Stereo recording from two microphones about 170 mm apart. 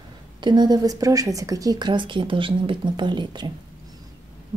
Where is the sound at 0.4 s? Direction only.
25° right (ahead or behind).